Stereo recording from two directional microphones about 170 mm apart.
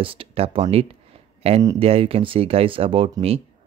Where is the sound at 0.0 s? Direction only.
30° right (ahead or behind).